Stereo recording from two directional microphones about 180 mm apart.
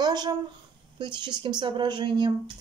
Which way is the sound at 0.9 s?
25° right (ahead or behind).